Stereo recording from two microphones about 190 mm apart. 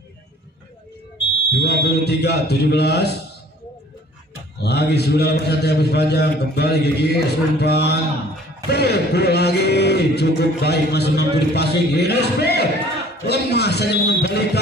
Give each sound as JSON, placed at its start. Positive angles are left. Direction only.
{"t": 1.5, "sound": "a man's voice", "side_deg": 60}
{"t": 4.6, "sound": "a man's voice", "side_deg": 60}